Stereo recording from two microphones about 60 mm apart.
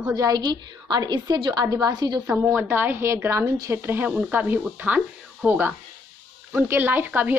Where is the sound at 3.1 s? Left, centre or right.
Right.